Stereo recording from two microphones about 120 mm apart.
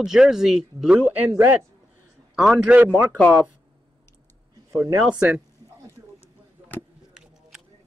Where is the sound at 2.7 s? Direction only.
15° right (ahead or behind).